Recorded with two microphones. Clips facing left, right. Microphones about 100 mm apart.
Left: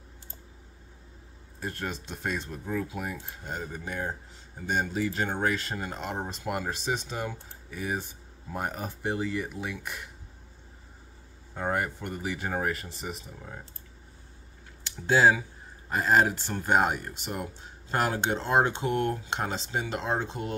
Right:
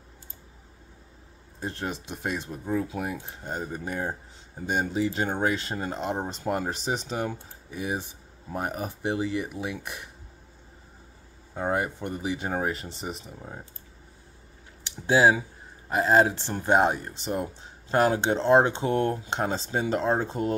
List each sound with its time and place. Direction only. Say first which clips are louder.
1.6 s speech: right 2 dB; 20° right (ahead or behind)
4.6 s speech: right 2 dB; 15° right (ahead or behind)
7.2 s speech: right 3 dB; 15° right (ahead or behind)
11.5 s speech: right 2 dB; 15° right (ahead or behind)
14.8 s speech: right 2 dB; 15° right (ahead or behind); by 20.5 s 40° right (ahead or behind)